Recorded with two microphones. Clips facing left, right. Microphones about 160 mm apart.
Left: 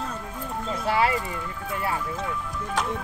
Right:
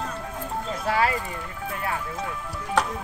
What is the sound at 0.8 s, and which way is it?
Speech, 25° left (ahead or behind).